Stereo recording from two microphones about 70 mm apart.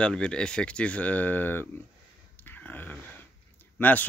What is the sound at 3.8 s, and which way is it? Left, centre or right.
Speech, left.